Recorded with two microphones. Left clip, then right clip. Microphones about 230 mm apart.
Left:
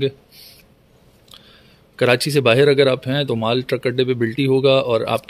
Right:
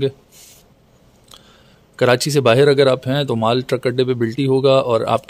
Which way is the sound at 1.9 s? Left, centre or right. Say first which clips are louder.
Right 1 dB; centre.